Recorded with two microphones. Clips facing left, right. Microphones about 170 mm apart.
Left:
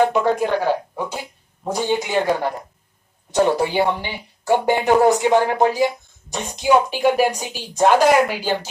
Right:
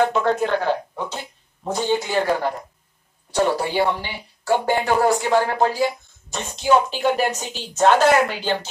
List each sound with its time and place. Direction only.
0.0 s speech: 15° left (ahead or behind)